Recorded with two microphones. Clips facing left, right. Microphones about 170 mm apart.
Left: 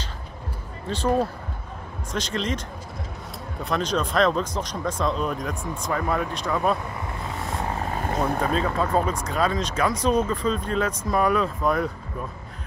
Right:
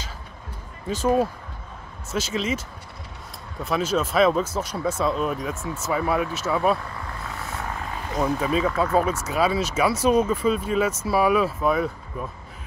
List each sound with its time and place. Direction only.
0.8 s speech: 10° right (ahead or behind)
3.6 s speech: 5° right (ahead or behind)
7.9 s vehicle: 50° left (ahead or behind)
8.5 s speech: 10° right (ahead or behind)